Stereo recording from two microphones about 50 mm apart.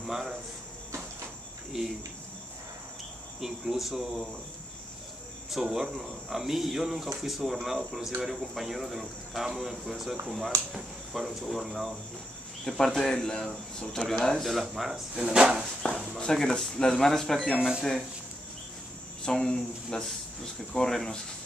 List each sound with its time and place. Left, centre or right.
0.0 s speech: centre
1.7 s speech: centre
3.3 s speech: centre
5.5 s speech: centre
12.6 s speech: centre
15.8 s a sound: left
16.2 s speech: centre
17.6 s speech: centre
19.2 s speech: centre